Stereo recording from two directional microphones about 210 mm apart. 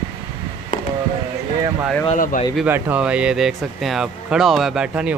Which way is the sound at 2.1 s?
35° left (ahead or behind).